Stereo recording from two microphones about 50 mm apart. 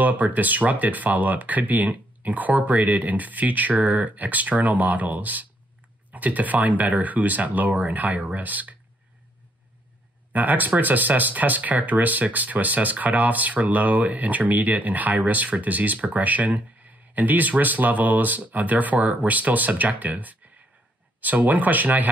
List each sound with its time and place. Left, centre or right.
0.0 s speech: right
10.3 s speech: right